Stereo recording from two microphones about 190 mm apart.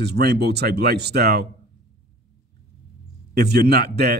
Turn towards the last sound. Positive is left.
turn(degrees=-55)  # may be behind; listen again after turning